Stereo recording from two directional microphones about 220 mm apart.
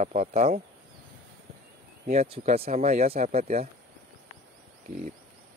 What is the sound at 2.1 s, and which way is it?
Speech, 30° right (ahead or behind).